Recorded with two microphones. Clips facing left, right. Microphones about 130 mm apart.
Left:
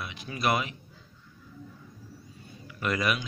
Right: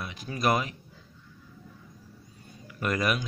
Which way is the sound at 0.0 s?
40° right (ahead or behind).